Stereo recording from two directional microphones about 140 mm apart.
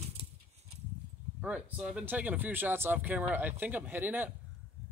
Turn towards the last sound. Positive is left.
turn(degrees=-15)  # may be behind; listen again after turning